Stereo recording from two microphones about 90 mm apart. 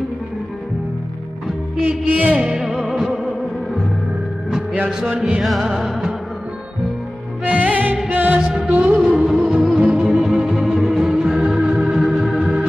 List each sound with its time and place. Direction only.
1.9 s music: 20° right (ahead or behind)
2.6 s music: centre (ahead or behind)
4.5 s music: 5° right (ahead or behind)
7.5 s music: 15° right (ahead or behind)
8.8 s music: 5° right (ahead or behind)